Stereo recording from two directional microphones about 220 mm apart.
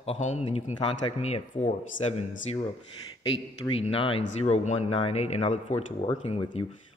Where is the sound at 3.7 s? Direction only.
25° left (ahead or behind).